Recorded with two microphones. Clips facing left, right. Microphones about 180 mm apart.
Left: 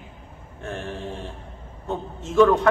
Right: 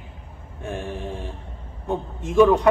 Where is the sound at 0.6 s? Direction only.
15° right (ahead or behind).